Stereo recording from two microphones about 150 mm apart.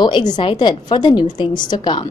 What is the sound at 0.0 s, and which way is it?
A woman's voice, 30° left (ahead or behind).